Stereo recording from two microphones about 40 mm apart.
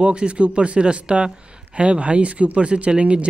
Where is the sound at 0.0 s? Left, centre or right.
Right.